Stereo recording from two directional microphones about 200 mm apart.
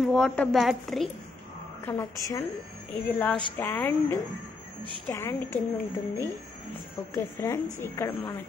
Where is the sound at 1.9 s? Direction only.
15° left (ahead or behind).